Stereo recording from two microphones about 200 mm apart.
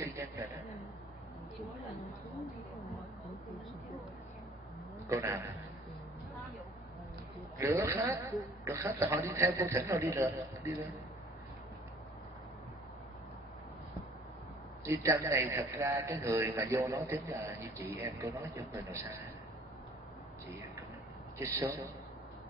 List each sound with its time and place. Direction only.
0.1 s a sound: 10° right (ahead or behind)
3.4 s speech: centre (ahead or behind)
5.0 s a man's voice: 15° right (ahead or behind)
7.5 s a man's voice: 15° right (ahead or behind)
14.9 s a man's voice: 15° right (ahead or behind)
21.4 s a man's voice: 15° right (ahead or behind)